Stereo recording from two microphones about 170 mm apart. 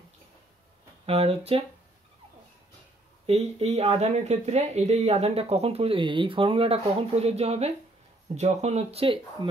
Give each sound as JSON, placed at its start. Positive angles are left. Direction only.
{"t": 1.0, "sound": "speech", "side_deg": -35}
{"t": 3.3, "sound": "speech", "side_deg": -40}